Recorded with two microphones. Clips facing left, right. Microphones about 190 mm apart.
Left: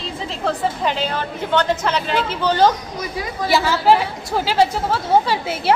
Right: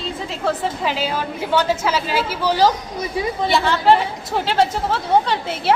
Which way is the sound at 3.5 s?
5° left (ahead or behind).